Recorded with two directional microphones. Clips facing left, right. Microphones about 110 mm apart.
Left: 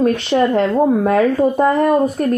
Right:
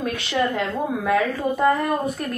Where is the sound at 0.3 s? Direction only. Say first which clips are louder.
Left 5 dB; 35° left (ahead or behind).